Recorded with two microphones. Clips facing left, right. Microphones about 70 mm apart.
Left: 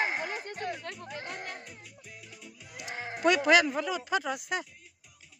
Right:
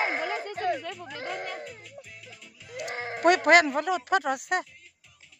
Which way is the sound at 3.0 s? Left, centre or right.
Right.